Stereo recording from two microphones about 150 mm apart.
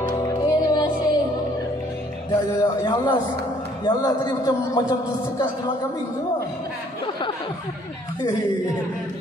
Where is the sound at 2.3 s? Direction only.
30° left (ahead or behind).